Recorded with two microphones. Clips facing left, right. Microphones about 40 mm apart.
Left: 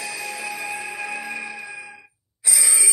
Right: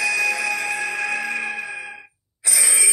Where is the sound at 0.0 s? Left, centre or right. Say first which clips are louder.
Right 10 dB; right.